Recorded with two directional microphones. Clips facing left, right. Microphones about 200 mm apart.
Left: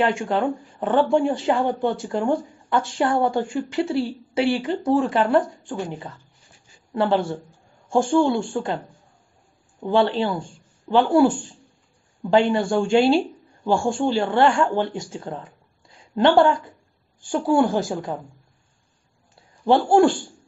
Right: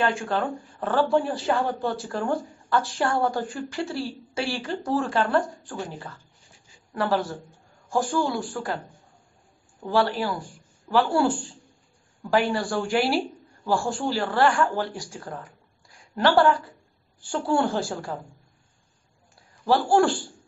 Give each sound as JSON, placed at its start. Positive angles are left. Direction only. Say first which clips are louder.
{"t": 0.2, "sound": "speech", "louder": "left 4 dB", "side_deg": 20}
{"t": 9.8, "sound": "speech", "louder": "left 4 dB", "side_deg": 25}
{"t": 19.6, "sound": "speech", "louder": "left 4 dB", "side_deg": 20}